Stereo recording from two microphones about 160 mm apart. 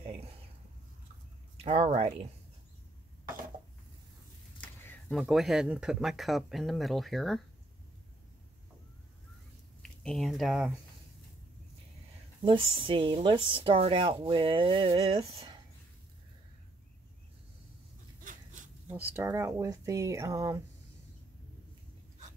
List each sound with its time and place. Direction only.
1.6 s speech: 40° right (ahead or behind)
4.6 s a sound: 10° left (ahead or behind)
5.1 s speech: centre (ahead or behind)
9.8 s speech: 5° left (ahead or behind)
12.4 s speech: 35° right (ahead or behind)
18.2 s a sound: 55° right (ahead or behind)
18.9 s speech: 10° right (ahead or behind)